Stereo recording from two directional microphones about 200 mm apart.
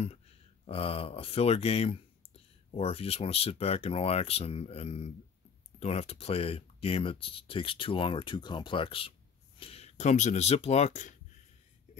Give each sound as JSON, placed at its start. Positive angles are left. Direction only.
{"t": 0.7, "sound": "speech", "side_deg": 30}